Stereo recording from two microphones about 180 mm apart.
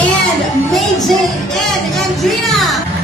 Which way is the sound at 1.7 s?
Centre (ahead or behind).